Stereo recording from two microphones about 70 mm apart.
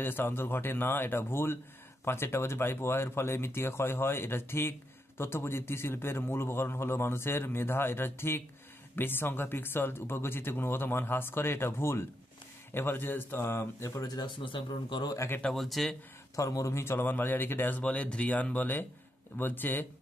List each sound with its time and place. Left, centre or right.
0.0 s speech: left
15.5 s speech: centre
16.3 s speech: left